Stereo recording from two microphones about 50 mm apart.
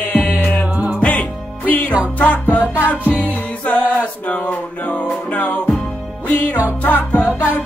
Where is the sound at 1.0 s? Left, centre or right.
Left.